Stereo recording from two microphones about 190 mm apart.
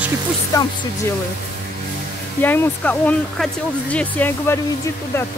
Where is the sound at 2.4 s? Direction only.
10° left (ahead or behind).